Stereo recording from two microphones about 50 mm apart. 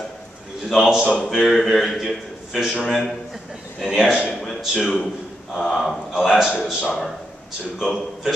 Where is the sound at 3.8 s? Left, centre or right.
Centre.